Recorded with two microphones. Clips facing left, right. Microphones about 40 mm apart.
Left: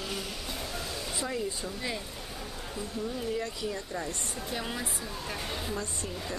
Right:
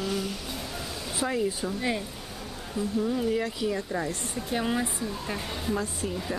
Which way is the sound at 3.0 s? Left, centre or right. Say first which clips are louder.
Right 4 dB; centre.